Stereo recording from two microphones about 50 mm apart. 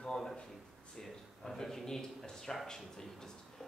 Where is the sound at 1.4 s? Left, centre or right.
Centre.